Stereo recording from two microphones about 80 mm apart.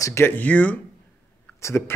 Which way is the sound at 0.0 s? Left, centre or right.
Left.